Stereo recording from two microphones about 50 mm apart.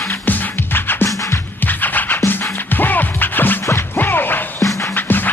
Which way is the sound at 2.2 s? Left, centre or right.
Left.